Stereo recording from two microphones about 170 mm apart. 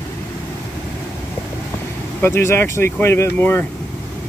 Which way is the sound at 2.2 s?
15° left (ahead or behind).